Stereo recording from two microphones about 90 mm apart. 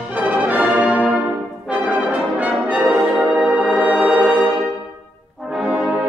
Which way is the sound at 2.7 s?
15° right (ahead or behind).